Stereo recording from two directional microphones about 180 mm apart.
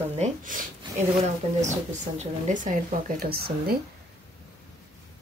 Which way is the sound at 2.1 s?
45° right (ahead or behind).